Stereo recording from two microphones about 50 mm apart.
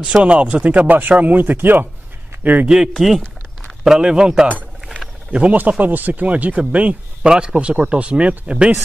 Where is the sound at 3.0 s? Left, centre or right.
Centre.